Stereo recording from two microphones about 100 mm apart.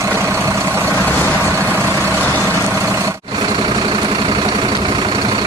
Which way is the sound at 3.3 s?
50° right (ahead or behind).